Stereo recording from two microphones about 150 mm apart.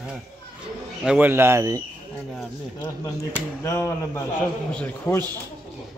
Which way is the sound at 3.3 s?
20° left (ahead or behind).